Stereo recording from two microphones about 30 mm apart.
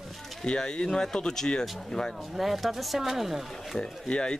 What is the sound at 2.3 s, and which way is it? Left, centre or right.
Speech, centre.